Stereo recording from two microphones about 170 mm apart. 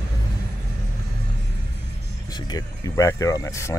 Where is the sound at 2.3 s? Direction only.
25° left (ahead or behind).